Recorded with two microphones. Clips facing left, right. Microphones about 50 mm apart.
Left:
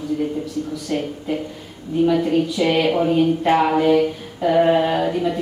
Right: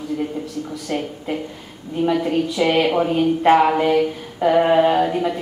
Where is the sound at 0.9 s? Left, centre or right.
Centre.